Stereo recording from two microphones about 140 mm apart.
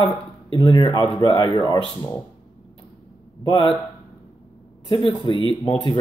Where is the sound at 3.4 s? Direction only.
35° left (ahead or behind).